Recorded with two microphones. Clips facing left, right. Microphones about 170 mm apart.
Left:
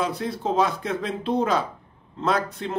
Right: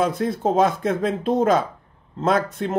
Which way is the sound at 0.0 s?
50° right (ahead or behind).